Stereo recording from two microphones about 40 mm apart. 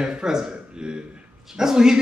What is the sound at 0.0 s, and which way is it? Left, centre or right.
A man's voice, centre.